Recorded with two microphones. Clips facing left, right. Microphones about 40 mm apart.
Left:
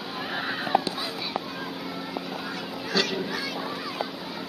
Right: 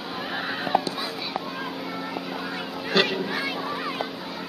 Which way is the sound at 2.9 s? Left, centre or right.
Right.